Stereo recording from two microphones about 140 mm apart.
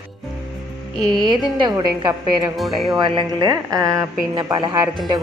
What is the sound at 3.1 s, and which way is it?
A woman's voice, 30° right (ahead or behind).